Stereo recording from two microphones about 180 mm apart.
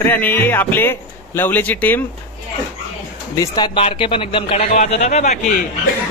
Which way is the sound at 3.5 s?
30° left (ahead or behind).